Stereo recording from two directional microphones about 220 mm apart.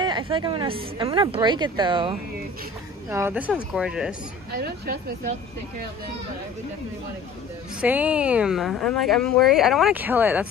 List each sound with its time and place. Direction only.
0.0 s a woman's voice: 20° right (ahead or behind)
3.1 s speech: 10° right (ahead or behind)
4.5 s a woman's voice: 45° right (ahead or behind)
7.8 s speech: 5° right (ahead or behind)